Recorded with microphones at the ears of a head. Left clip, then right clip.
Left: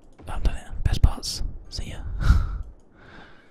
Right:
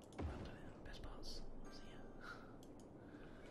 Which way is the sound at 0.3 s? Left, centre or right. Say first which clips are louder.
Left 17 dB; left.